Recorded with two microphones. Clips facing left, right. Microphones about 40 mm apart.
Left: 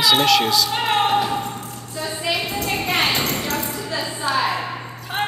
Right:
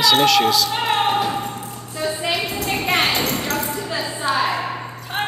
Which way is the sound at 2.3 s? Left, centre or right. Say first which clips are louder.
Right 1 dB; centre.